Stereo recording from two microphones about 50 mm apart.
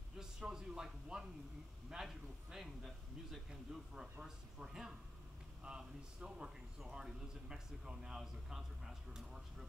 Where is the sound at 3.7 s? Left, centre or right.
Centre.